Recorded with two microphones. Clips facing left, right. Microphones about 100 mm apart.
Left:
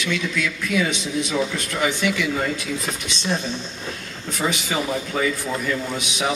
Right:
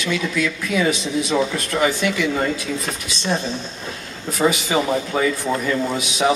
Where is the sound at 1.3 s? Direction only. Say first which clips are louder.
Right 5 dB; 10° right (ahead or behind).